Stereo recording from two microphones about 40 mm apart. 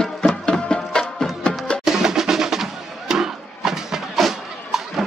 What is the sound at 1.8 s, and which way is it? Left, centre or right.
Music, centre.